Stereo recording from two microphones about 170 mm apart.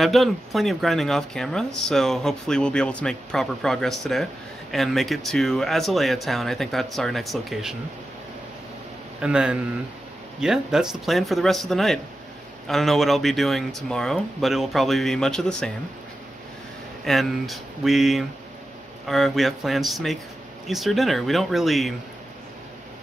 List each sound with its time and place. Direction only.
0.0 s speech: centre (ahead or behind)
9.2 s speech: 5° right (ahead or behind)
17.0 s speech: centre (ahead or behind)